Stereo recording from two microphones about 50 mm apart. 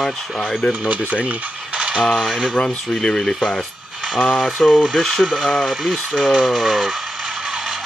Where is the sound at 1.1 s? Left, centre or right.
Right.